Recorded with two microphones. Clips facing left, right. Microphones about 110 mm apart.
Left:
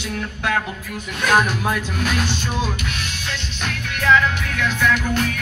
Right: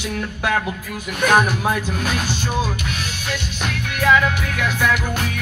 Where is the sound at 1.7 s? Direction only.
40° right (ahead or behind).